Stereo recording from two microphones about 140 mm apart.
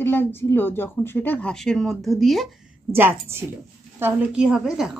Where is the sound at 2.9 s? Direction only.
15° right (ahead or behind).